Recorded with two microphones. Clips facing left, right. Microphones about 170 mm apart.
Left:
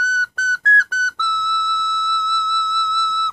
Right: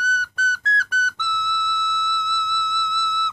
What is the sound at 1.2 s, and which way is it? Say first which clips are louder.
Whistle: left 2 dB; 50° left (ahead or behind).